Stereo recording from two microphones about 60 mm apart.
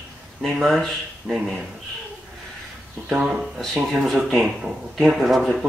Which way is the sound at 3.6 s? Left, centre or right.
Centre.